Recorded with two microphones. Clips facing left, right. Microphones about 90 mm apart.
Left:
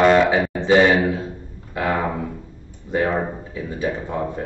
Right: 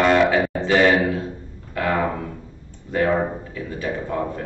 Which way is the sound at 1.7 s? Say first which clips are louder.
Even; 15° left (ahead or behind).